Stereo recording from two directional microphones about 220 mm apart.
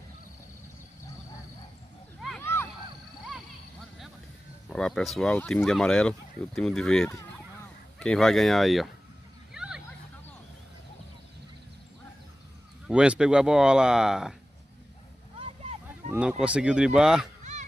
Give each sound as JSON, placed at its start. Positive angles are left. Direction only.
{"t": 2.2, "sound": "a sound", "side_deg": 5}
{"t": 4.6, "sound": "speech", "side_deg": 5}
{"t": 9.5, "sound": "hubbub", "side_deg": -5}
{"t": 12.8, "sound": "speech", "side_deg": -5}
{"t": 15.9, "sound": "speech", "side_deg": -5}
{"t": 17.4, "sound": "honk", "side_deg": -30}